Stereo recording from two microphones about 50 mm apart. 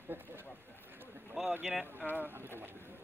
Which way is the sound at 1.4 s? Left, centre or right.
Centre.